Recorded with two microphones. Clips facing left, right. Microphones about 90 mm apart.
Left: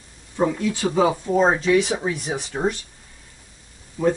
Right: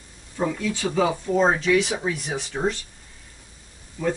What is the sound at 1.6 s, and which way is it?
Speech, 30° left (ahead or behind).